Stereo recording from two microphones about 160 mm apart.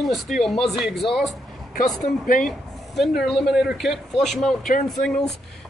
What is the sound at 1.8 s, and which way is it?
Speech, 55° left (ahead or behind).